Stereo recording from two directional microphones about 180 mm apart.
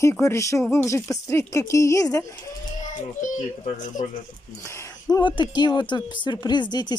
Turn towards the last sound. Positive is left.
turn(degrees=25)  # may be behind; listen again after turning